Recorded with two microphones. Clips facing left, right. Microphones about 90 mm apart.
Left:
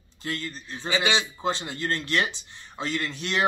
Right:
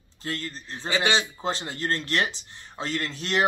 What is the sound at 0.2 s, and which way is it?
Speech, 30° right (ahead or behind).